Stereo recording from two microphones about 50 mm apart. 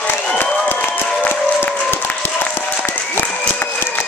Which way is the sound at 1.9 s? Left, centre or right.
Left.